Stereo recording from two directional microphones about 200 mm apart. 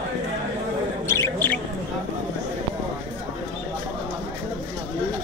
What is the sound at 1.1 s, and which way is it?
Bird, 10° left (ahead or behind).